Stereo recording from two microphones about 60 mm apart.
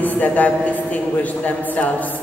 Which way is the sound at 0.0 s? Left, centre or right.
Left.